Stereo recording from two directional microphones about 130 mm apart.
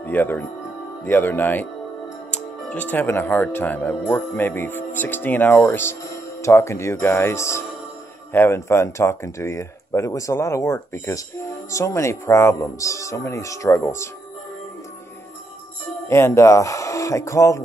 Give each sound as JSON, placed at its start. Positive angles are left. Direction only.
{"t": 0.0, "sound": "speech", "side_deg": 15}
{"t": 16.1, "sound": "speech", "side_deg": 20}